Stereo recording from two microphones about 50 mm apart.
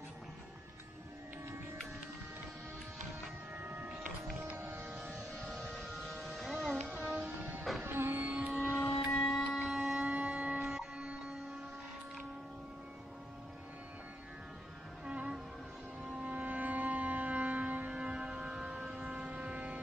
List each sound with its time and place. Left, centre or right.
3.5 s a sound: right
4.6 s music: right
5.1 s vehicle: centre
5.9 s music: centre
7.8 s music: right
8.6 s a sound: left
9.3 s wind instrument: centre
9.6 s a sound: centre
10.0 s music: right
15.0 s music: right
16.0 s civil defense siren: right